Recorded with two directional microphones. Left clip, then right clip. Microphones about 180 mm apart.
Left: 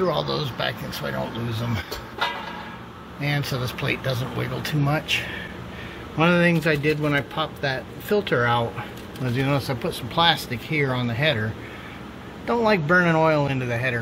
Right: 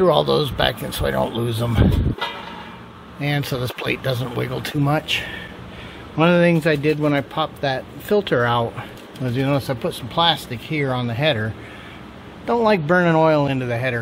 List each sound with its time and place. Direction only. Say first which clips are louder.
0.0 s speech: right 8 dB; 35° right (ahead or behind)
3.2 s speech: right 3 dB; 35° right (ahead or behind)
6.1 s speech: right 4 dB; 25° right (ahead or behind)
12.4 s speech: right 3 dB; 20° right (ahead or behind)